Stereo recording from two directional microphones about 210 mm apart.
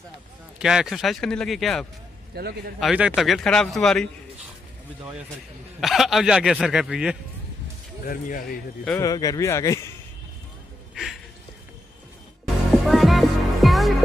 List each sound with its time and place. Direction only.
0.6 s speech: 5° right (ahead or behind)
2.3 s a man's voice: 50° right (ahead or behind)
2.8 s speech: 5° right (ahead or behind)
5.8 s speech: centre (ahead or behind)
8.0 s speech: 45° left (ahead or behind)
8.8 s speech: 15° left (ahead or behind)
12.7 s music: centre (ahead or behind)